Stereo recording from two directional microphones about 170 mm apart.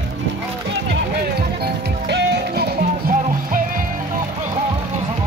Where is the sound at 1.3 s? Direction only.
70° right (ahead or behind).